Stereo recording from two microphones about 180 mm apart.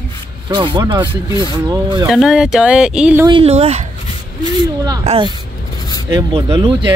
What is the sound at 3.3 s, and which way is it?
Speech, 30° right (ahead or behind).